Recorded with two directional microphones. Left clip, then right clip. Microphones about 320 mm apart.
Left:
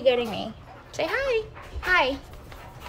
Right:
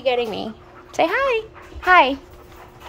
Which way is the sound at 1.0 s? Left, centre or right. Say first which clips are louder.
Right 7 dB; centre.